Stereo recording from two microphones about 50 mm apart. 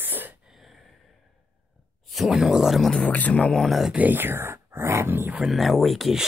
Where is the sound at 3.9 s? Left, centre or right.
Right.